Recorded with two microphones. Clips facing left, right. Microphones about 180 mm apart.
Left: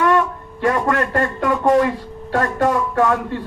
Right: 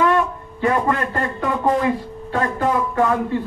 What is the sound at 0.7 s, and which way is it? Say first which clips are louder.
A man's voice: left 1 dB; 90° left.